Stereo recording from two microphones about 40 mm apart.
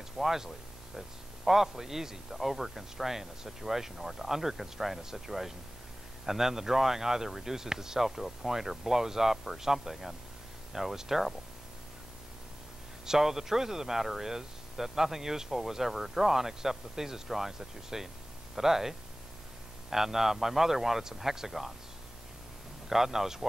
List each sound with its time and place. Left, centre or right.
0.2 s a man's voice: centre
13.0 s a man's voice: centre
22.8 s a man's voice: centre